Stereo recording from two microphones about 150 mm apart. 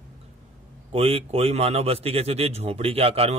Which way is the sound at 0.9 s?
40° right (ahead or behind).